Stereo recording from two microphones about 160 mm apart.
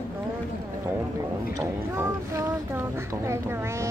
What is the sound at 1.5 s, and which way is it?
Speech, 20° right (ahead or behind).